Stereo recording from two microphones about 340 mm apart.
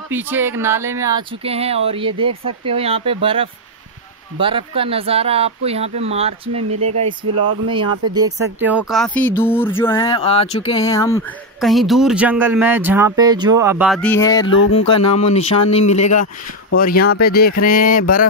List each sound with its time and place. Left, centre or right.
0.1 s speech: centre
6.7 s speech: right
8.5 s speech: centre; by 18.0 s left